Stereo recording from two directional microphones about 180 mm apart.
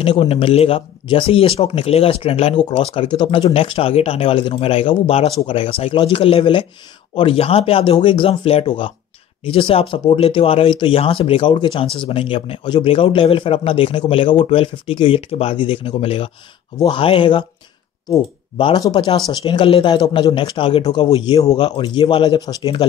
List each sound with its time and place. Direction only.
0.0 s speech: 30° left (ahead or behind)